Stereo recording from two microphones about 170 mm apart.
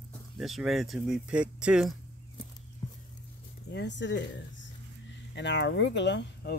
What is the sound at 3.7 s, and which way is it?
Speech, 90° left.